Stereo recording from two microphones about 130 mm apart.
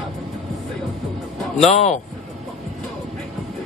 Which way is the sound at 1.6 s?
60° left (ahead or behind).